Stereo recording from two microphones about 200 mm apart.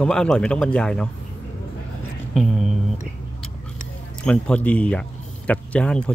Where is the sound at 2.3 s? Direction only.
Centre (ahead or behind).